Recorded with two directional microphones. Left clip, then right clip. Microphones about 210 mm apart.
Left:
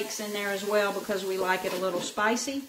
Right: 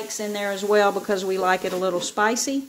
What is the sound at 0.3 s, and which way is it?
Speech, 45° right (ahead or behind).